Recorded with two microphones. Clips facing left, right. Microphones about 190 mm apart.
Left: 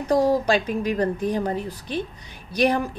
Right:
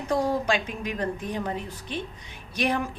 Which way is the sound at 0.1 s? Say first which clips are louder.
Left 6 dB; 40° left (ahead or behind).